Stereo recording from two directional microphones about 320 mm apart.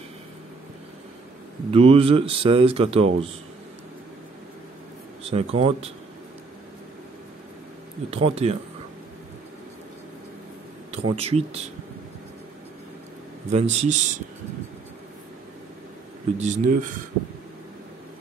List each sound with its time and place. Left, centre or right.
1.7 s speech: centre
5.3 s a man's voice: centre
8.1 s a man's voice: centre
10.9 s speech: centre
13.5 s a man's voice: centre
16.3 s a man's voice: right